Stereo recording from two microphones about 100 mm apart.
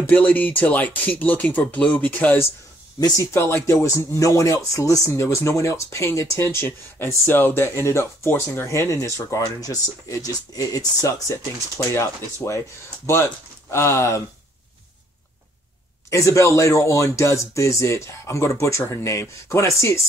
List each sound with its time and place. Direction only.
0.0 s speech: 15° left (ahead or behind)
3.0 s speech: 40° left (ahead or behind)
3.3 s speech: 25° left (ahead or behind)
16.1 s speech: 30° left (ahead or behind)